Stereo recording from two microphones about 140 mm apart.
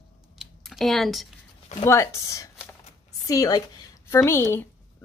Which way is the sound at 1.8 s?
20° left (ahead or behind).